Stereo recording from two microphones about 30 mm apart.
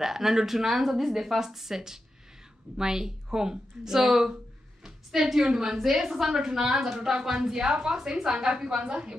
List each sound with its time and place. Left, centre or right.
0.0 s a woman's voice: centre
4.8 s a sound: centre
6.0 s a woman's voice: centre; by 9.1 s right